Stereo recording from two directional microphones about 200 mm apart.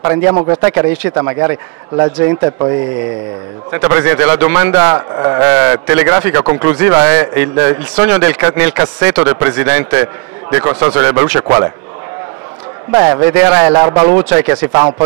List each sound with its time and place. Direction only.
0.0 s a man's voice: 20° right (ahead or behind)
3.7 s speech: 15° right (ahead or behind)
12.9 s speech: 15° right (ahead or behind)